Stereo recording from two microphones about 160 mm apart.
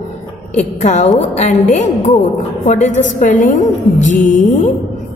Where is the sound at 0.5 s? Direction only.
45° left (ahead or behind).